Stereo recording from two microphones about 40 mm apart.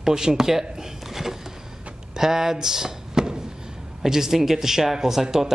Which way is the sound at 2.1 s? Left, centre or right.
Centre.